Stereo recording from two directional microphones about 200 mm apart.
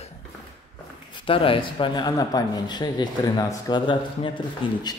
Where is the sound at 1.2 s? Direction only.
25° left (ahead or behind).